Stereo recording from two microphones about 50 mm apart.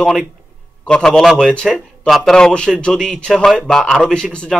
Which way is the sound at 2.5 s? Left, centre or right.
Centre.